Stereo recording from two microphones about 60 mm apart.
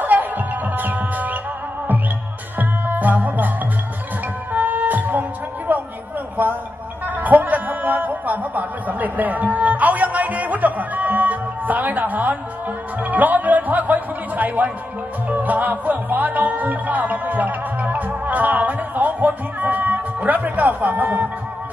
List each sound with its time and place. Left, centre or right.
0.0 s music: right
2.6 s music: right
5.7 s a sound: right
9.6 s music: right